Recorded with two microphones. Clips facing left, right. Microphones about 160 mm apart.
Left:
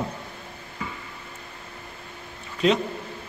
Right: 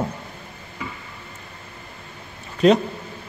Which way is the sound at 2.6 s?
45° right (ahead or behind).